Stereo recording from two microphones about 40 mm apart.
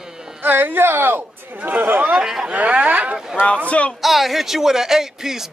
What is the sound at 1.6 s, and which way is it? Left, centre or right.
Speech, right.